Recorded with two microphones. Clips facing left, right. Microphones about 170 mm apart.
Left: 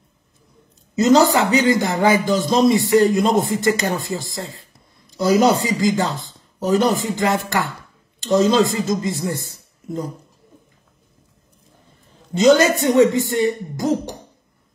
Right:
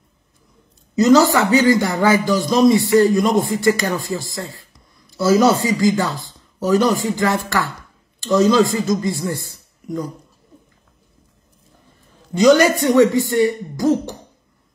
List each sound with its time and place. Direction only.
0.9 s speech: 20° left (ahead or behind)
12.4 s speech: 25° left (ahead or behind)